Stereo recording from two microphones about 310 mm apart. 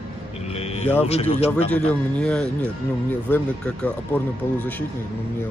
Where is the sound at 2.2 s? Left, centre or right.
Centre.